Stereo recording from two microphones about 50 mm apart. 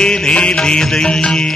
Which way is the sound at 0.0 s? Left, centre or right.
Centre.